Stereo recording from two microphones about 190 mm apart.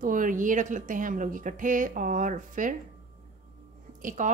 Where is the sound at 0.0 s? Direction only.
45° right (ahead or behind).